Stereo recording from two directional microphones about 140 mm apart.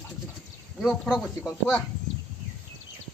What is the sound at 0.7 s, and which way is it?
Speech, 5° right (ahead or behind).